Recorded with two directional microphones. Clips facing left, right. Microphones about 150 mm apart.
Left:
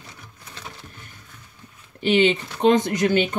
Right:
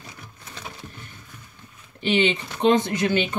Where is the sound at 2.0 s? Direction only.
45° left (ahead or behind).